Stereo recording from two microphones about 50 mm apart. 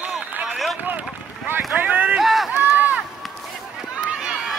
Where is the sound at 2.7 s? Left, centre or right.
Right.